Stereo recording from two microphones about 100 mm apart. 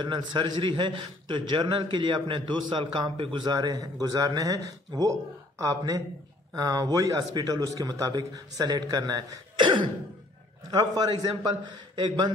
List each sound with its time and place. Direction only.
0.0 s a man's voice: 50° right (ahead or behind)
11.0 s a man's voice: 45° right (ahead or behind)